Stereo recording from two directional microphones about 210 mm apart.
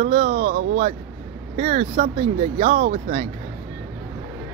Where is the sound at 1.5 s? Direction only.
30° right (ahead or behind).